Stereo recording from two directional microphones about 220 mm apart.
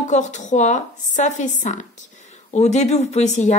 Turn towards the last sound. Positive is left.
turn(degrees=30)  # may be behind; listen again after turning